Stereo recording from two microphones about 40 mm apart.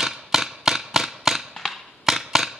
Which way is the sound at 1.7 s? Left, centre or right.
Centre.